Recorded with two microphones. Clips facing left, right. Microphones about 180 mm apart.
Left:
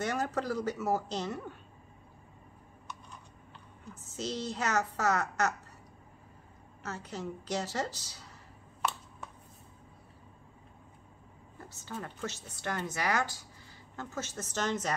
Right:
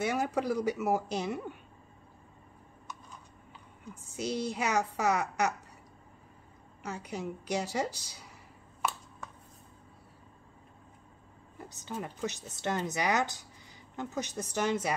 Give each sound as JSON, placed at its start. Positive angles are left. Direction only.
{"t": 0.0, "sound": "a woman's voice", "side_deg": -10}
{"t": 3.9, "sound": "a woman's voice", "side_deg": -10}
{"t": 6.8, "sound": "a woman's voice", "side_deg": -15}
{"t": 11.7, "sound": "a woman's voice", "side_deg": -15}